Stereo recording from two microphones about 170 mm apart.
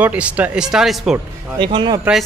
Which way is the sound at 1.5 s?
25° right (ahead or behind).